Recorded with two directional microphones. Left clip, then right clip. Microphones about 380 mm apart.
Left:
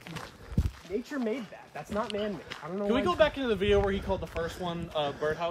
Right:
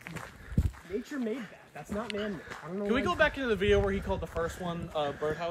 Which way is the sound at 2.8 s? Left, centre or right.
Centre.